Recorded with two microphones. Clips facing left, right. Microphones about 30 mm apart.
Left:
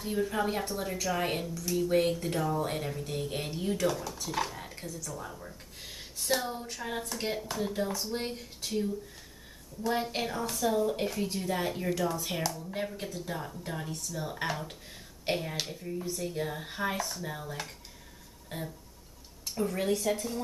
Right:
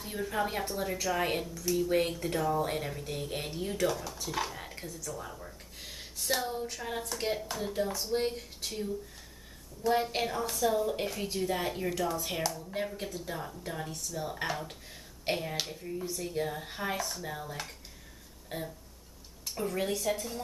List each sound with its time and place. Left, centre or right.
0.0 s a woman's voice: centre
18.5 s a sound: centre
19.4 s a woman's voice: centre